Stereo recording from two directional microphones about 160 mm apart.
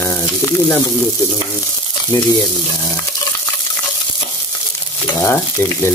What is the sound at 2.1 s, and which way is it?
Frying, 20° left (ahead or behind).